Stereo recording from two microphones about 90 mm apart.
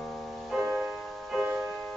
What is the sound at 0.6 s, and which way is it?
Music, 20° right (ahead or behind).